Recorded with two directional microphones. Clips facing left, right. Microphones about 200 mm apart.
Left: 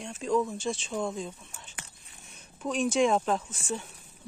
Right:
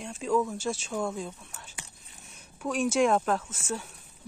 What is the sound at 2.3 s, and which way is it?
A woman's voice, 10° right (ahead or behind).